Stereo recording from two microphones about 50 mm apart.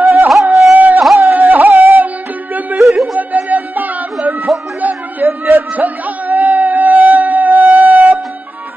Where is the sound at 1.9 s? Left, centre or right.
Right.